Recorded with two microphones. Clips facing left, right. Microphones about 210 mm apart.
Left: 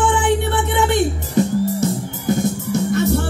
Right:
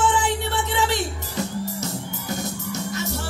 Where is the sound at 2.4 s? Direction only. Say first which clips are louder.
Left 10 dB; 55° left (ahead or behind).